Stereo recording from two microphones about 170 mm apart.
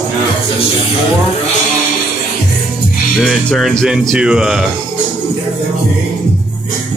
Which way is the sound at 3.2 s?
Centre (ahead or behind).